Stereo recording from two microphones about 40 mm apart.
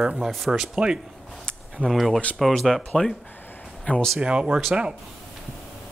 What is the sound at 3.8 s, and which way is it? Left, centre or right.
Speech, left.